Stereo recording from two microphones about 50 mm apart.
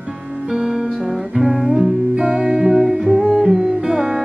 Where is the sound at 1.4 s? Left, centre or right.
Centre.